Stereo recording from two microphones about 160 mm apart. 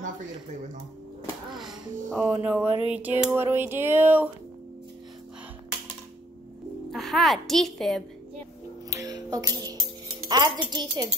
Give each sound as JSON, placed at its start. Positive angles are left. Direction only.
{"t": 2.0, "sound": "speech", "side_deg": -5}
{"t": 2.9, "sound": "a sound", "side_deg": -10}
{"t": 6.9, "sound": "a woman's voice", "side_deg": 0}
{"t": 8.9, "sound": "music", "side_deg": -25}
{"t": 10.2, "sound": "speech", "side_deg": -25}